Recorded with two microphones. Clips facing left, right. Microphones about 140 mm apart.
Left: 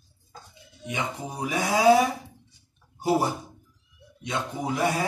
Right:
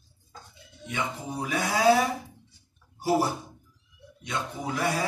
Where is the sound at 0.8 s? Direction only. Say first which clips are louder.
Left 1 dB; 15° left (ahead or behind).